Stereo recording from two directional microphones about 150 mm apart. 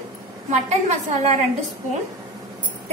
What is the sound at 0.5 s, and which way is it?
Speech, 50° right (ahead or behind).